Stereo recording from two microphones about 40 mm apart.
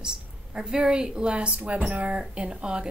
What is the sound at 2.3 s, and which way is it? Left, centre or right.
Speech, right.